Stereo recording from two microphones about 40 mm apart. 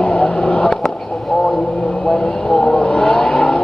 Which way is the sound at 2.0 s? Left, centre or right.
Centre.